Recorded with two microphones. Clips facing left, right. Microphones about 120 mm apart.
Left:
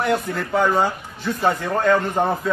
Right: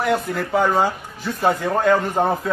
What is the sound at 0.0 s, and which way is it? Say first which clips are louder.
Speech: right 1 dB; centre (ahead or behind).